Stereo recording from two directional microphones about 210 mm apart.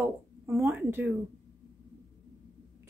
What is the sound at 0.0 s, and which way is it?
A woman's voice, 10° right (ahead or behind).